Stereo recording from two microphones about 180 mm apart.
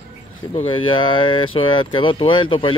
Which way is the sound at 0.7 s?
25° left (ahead or behind).